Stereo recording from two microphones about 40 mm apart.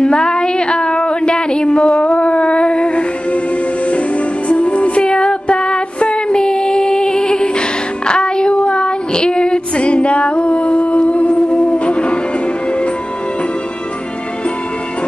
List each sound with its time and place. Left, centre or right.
0.0 s a sound: left
4.5 s music: left
8.1 s child singing: left